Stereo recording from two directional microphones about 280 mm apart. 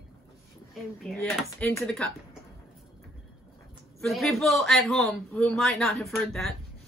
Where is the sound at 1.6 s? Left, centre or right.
Centre.